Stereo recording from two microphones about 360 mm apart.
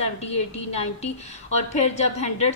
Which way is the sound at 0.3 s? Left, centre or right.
Centre.